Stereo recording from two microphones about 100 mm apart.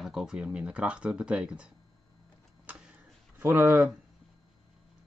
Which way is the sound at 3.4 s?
25° right (ahead or behind).